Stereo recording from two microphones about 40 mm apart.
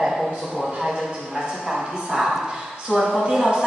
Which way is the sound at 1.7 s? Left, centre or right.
Centre.